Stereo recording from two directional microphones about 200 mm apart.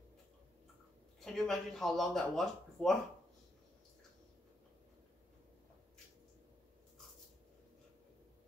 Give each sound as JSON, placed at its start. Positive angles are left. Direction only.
{"t": 1.2, "sound": "speech", "side_deg": 0}